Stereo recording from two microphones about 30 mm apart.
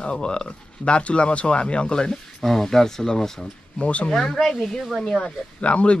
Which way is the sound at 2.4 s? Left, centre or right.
Centre.